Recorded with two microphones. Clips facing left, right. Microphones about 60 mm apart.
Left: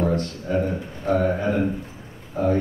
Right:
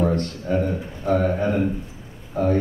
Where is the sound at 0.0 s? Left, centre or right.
Right.